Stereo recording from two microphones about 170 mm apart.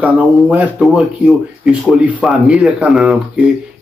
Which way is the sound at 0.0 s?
10° right (ahead or behind).